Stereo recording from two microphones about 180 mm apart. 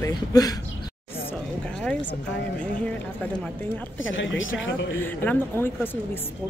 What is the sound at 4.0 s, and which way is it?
Speech, 90° left.